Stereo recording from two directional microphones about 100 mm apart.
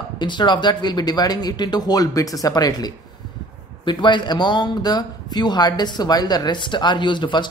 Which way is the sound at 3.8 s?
50° left (ahead or behind).